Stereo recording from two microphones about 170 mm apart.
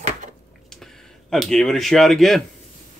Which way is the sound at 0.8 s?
Centre (ahead or behind).